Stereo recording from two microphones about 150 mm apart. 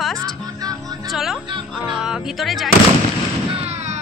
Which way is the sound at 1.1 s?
Centre (ahead or behind).